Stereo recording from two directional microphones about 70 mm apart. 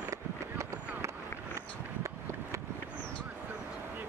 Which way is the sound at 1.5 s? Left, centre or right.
Right.